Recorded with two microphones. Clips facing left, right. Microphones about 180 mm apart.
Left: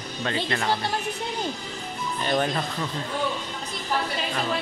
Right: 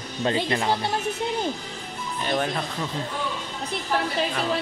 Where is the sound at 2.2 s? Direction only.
5° right (ahead or behind).